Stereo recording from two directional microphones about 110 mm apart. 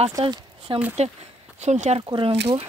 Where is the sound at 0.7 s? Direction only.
50° right (ahead or behind).